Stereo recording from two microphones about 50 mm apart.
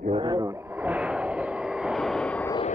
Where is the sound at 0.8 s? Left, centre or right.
Right.